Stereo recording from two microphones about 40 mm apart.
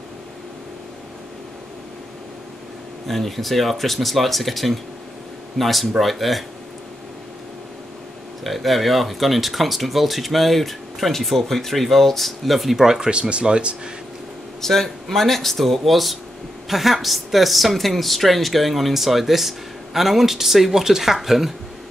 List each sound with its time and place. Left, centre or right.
3.1 s speech: centre
8.5 s speech: centre
13.1 s speech: right
14.6 s speech: centre